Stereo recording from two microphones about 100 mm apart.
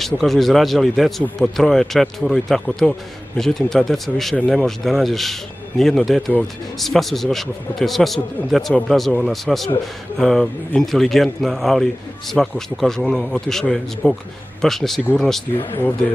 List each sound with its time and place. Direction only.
0.0 s speech: centre (ahead or behind)